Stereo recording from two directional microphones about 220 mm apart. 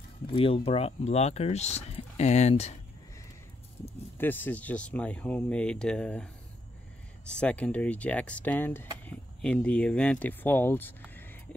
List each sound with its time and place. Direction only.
0.3 s speech: 25° left (ahead or behind)
4.2 s speech: 10° left (ahead or behind)
7.2 s speech: 5° left (ahead or behind)